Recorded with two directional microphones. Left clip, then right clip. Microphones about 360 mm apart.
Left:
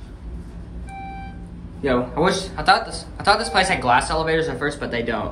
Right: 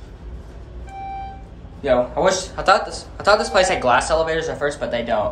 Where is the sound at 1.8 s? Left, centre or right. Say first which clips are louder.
Right 3 dB; centre.